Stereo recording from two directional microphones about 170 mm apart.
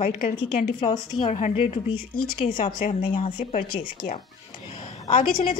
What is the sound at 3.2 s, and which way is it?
Speech, 45° left (ahead or behind).